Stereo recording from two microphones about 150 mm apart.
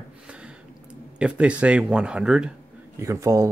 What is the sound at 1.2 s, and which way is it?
Speech, 5° right (ahead or behind).